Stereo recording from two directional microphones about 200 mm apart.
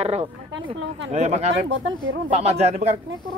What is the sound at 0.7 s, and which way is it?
Speech, 65° right (ahead or behind).